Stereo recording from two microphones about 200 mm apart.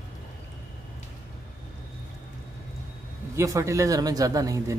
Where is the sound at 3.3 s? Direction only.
15° right (ahead or behind).